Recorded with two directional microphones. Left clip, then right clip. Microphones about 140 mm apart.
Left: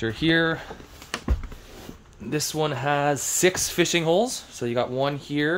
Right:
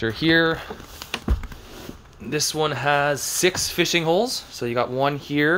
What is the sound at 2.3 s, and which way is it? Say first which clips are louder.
Speech: right 3 dB; 30° left (ahead or behind).